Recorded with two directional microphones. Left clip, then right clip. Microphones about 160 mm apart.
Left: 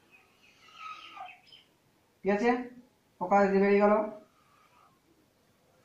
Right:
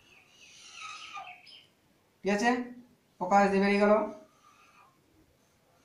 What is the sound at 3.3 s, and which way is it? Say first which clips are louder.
Speech: even; 35° right (ahead or behind).